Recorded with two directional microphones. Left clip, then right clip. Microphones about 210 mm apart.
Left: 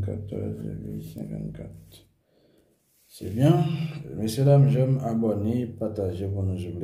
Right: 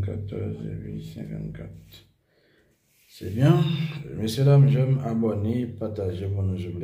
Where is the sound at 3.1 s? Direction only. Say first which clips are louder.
Even; 10° left (ahead or behind).